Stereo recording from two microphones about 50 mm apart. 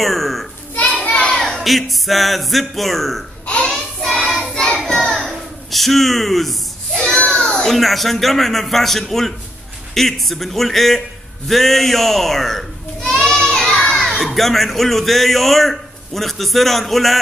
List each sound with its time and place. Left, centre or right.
0.0 s a man's voice: centre
1.0 s a sound: centre
1.6 s a man's voice: centre
3.6 s child singing: centre
5.3 s a sound: centre
7.2 s children playing: centre
7.6 s a man's voice: centre
11.4 s a sound: centre
14.2 s a man's voice: centre